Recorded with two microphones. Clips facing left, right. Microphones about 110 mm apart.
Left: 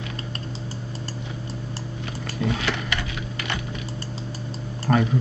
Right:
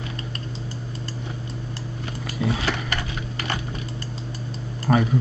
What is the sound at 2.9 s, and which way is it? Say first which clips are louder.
Typewriter: even; 40° right (ahead or behind).